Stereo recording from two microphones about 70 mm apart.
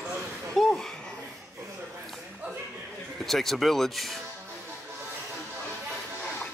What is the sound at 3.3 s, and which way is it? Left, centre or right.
Speech, centre.